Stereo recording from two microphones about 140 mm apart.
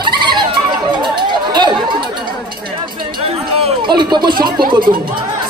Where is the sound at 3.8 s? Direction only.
30° right (ahead or behind).